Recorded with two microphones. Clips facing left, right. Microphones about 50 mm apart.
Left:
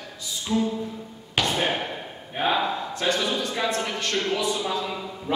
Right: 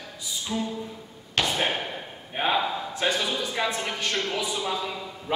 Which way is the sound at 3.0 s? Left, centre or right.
Centre.